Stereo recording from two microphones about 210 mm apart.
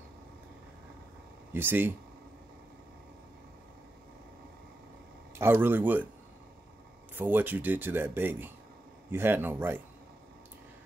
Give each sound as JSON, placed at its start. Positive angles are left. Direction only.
{"t": 1.5, "sound": "speech", "side_deg": -10}
{"t": 5.4, "sound": "speech", "side_deg": -10}
{"t": 7.2, "sound": "speech", "side_deg": -10}